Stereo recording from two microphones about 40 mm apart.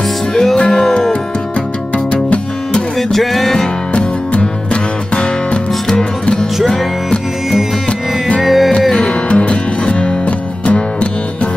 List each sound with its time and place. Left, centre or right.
0.3 s music: centre
2.2 s music: left
3.0 s music: centre
3.9 s music: left
6.6 s music: centre
8.4 s music: centre
9.3 s music: left